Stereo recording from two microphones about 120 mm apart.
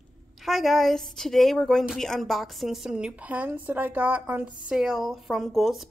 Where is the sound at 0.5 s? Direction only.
Centre (ahead or behind).